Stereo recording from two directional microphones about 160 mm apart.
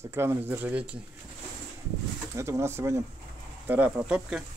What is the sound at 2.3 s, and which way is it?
Speech, 20° right (ahead or behind).